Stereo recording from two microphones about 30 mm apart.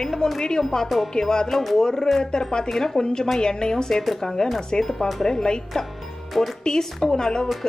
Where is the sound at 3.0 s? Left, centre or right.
Left.